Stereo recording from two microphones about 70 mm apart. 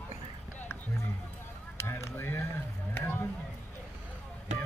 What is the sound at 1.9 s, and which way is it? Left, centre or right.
Speech, left.